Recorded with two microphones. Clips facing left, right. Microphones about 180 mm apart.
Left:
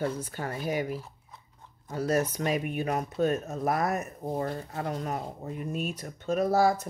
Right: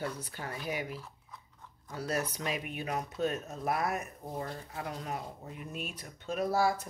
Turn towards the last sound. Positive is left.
turn(degrees=40)  # may be behind; listen again after turning